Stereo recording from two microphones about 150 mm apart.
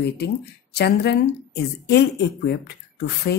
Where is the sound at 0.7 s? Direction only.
90° left.